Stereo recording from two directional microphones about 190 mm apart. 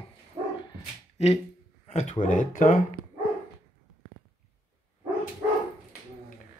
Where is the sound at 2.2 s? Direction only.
45° left (ahead or behind).